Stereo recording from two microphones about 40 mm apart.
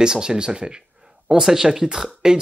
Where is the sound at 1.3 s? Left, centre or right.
Centre.